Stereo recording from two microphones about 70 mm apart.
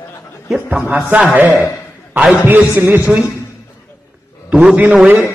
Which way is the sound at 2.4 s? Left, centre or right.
Right.